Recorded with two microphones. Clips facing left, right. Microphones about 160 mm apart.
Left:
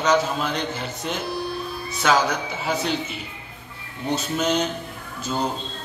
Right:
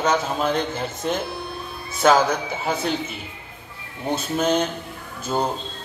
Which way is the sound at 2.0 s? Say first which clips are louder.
Right 4 dB; 45° right (ahead or behind).